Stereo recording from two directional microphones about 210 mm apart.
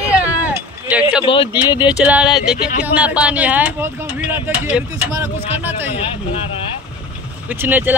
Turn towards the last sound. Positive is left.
turn(degrees=-10)  # may be behind; listen again after turning